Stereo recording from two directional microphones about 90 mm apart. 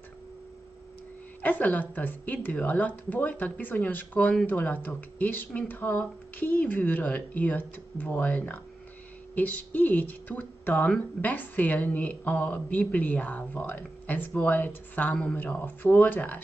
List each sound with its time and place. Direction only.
1.4 s speech: 15° left (ahead or behind)